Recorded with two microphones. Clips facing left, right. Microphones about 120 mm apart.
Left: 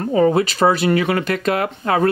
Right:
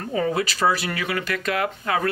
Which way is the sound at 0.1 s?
30° left (ahead or behind).